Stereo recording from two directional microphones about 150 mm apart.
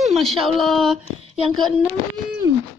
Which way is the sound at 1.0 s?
45° right (ahead or behind).